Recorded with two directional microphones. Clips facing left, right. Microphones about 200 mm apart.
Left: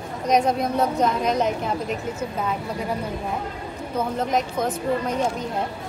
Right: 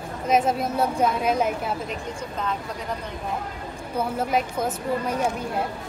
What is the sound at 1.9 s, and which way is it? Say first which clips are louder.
A woman's voice: left 4 dB; 5° left (ahead or behind).